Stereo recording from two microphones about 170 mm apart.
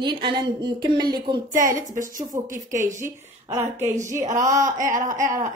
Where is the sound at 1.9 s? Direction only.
50° right (ahead or behind).